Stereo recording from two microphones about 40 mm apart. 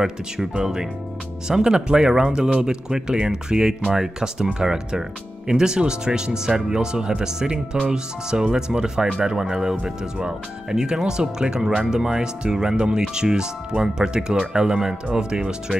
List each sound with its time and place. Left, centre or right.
0.0 s speech: centre